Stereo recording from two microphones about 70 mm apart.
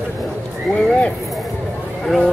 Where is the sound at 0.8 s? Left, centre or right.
Centre.